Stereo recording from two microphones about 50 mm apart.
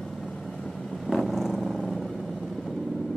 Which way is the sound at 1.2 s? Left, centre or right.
Centre.